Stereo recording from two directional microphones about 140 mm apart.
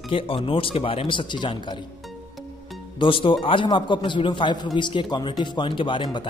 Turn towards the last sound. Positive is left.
turn(degrees=35)  # may be behind; listen again after turning